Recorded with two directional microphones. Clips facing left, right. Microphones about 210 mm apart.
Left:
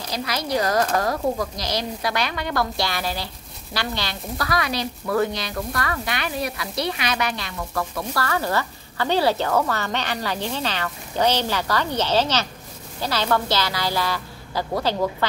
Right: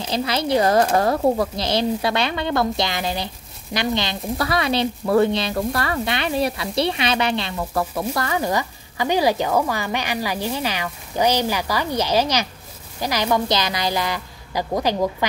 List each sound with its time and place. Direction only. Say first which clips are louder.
0.0 s speech: right 5 dB; 25° right (ahead or behind)